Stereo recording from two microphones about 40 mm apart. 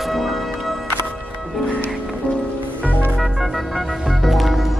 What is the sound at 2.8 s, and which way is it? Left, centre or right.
Music, left.